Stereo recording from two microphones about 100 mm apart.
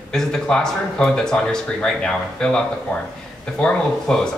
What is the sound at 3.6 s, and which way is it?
Speech, 5° left (ahead or behind).